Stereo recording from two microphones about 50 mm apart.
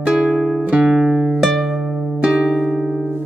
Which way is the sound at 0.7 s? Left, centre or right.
Right.